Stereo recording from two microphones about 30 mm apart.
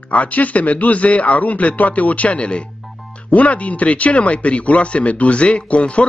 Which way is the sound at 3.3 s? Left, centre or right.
Left.